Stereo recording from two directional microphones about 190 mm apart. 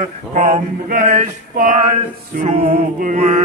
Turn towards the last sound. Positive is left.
turn(degrees=-35)  # may be behind; listen again after turning